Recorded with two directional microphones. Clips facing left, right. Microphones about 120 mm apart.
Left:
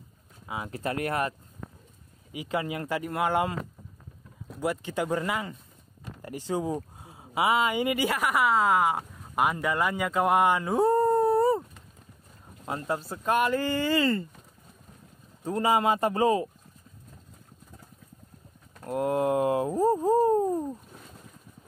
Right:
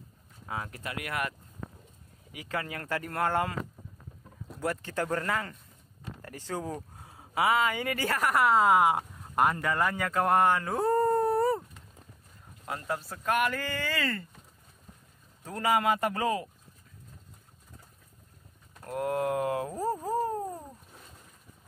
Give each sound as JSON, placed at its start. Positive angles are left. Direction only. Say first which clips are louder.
{"t": 0.7, "sound": "speech", "louder": "left 8 dB", "side_deg": 35}
{"t": 2.3, "sound": "speech", "louder": "left 5 dB", "side_deg": 20}
{"t": 4.6, "sound": "speech", "louder": "left 3 dB", "side_deg": 15}
{"t": 11.0, "sound": "dog", "louder": "left 3 dB", "side_deg": 10}
{"t": 12.6, "sound": "speech", "louder": "left 4 dB", "side_deg": 25}
{"t": 15.4, "sound": "speech", "louder": "left 3 dB", "side_deg": 25}
{"t": 18.9, "sound": "speech", "louder": "left 4 dB", "side_deg": 25}
{"t": 20.2, "sound": "a sound", "louder": "left 9 dB", "side_deg": 25}